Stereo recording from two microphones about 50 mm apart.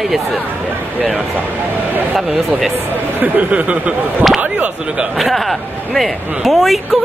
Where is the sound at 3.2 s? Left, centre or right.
Right.